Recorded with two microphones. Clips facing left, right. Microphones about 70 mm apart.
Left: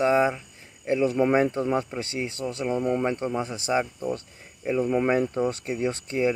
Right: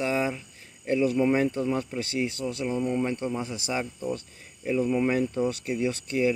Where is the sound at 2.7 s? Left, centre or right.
Left.